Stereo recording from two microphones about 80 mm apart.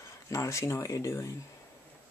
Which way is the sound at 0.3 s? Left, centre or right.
Left.